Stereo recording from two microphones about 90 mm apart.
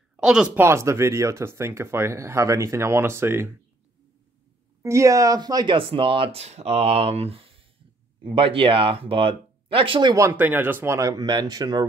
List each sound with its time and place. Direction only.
0.1 s speech: 10° right (ahead or behind)
0.6 s speech: 30° right (ahead or behind)
4.8 s speech: 35° right (ahead or behind); by 5.8 s 50° right (ahead or behind)
5.8 s speech: 80° right
6.9 s speech: 90° right
8.2 s speech: 75° right (ahead or behind)
10.3 s speech: 20° right (ahead or behind)
11.0 s speech: 45° right (ahead or behind)